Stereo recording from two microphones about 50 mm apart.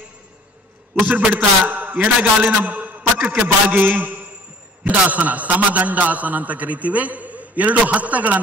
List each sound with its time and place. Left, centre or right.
1.0 s a man's voice: right